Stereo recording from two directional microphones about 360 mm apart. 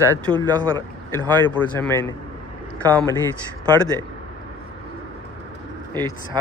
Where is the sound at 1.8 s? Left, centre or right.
Centre.